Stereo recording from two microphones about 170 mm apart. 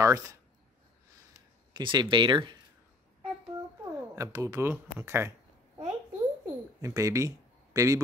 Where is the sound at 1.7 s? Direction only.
25° right (ahead or behind).